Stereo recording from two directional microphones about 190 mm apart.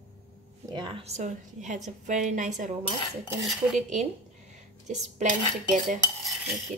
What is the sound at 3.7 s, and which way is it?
Cutlery, 40° right (ahead or behind).